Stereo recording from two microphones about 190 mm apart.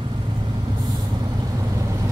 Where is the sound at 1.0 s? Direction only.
20° right (ahead or behind).